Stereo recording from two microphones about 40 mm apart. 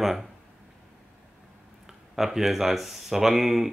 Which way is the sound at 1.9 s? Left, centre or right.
Centre.